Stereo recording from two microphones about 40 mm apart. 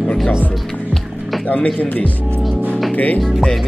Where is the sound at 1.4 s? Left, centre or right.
Left.